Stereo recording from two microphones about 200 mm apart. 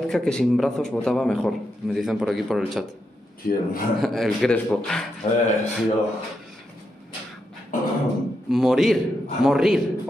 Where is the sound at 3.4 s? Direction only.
50° left (ahead or behind).